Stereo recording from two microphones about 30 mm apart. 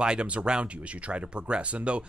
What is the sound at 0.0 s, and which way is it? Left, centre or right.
Speech, right.